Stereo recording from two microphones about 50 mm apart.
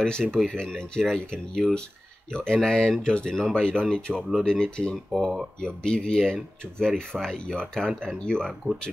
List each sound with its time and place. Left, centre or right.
0.0 s speech: centre